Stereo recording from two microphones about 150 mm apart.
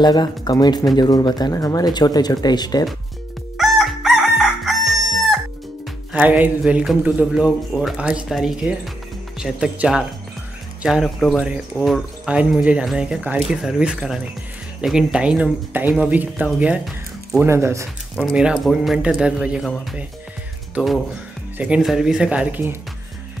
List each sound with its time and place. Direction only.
0.0 s speech: 30° left (ahead or behind)
3.5 s crowing: centre (ahead or behind)
6.1 s speech: 10° right (ahead or behind)
18.1 s speech: 5° right (ahead or behind)
20.7 s speech: centre (ahead or behind)